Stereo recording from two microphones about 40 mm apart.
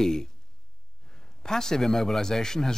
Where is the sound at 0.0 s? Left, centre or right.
Centre.